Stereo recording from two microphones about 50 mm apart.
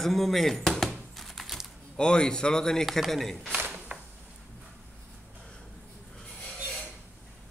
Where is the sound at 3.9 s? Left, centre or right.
Right.